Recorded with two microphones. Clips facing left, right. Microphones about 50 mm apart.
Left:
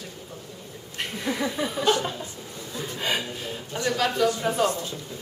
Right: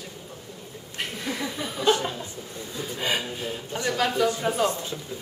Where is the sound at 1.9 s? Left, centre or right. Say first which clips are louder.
Right 3 dB; centre.